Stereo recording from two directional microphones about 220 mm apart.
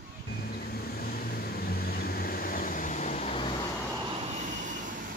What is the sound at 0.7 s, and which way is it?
Vehicle, 45° left (ahead or behind).